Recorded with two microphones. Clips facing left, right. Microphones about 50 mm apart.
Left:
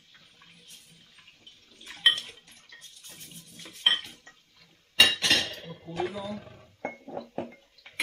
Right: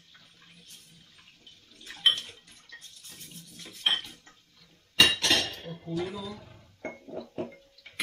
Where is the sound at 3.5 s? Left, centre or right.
Centre.